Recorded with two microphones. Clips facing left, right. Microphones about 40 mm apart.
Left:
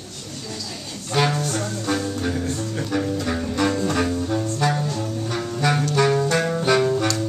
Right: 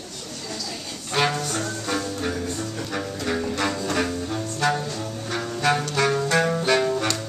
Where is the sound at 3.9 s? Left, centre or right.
Centre.